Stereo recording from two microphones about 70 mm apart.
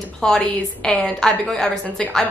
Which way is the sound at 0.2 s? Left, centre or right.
Centre.